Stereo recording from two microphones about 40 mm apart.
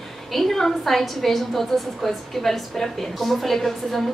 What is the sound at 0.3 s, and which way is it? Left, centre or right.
A woman's voice, centre.